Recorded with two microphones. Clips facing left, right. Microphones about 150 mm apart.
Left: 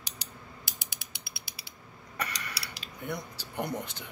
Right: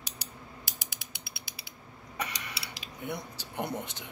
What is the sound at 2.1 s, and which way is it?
Mechanisms, 20° right (ahead or behind).